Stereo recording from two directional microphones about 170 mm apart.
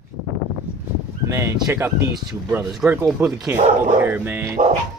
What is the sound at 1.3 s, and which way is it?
Speech, 15° right (ahead or behind).